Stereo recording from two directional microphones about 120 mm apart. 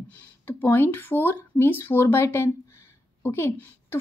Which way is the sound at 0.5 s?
15° left (ahead or behind).